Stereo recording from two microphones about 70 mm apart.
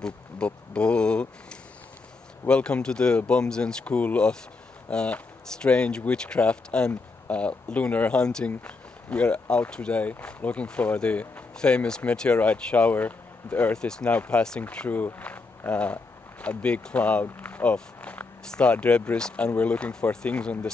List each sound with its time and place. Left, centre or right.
0.0 s speech: centre
13.7 s speech: centre
14.1 s speech: left